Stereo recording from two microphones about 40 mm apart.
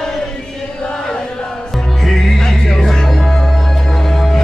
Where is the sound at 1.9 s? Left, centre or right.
Centre.